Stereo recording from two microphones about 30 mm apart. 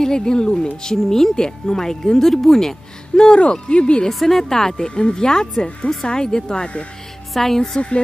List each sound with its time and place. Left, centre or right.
0.0 s speech: left
0.9 s speech: centre
1.3 s speech: left
3.1 s speech: left
4.1 s a woman's voice: centre
4.4 s speech: centre
4.8 s speech: left
7.3 s speech: centre